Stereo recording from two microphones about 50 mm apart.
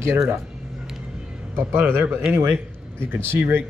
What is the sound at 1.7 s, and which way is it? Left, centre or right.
Speech, right.